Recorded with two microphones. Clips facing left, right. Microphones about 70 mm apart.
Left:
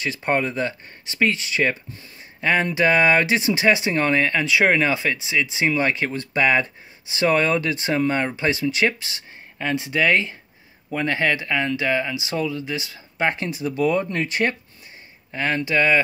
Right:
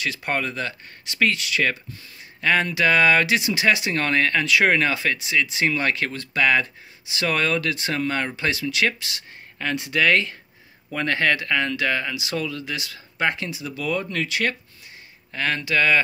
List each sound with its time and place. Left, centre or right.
0.0 s speech: left
9.6 s speech: centre
13.3 s speech: left
15.3 s speech: left